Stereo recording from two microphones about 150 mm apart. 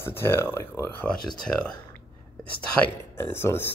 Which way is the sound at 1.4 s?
5° left (ahead or behind).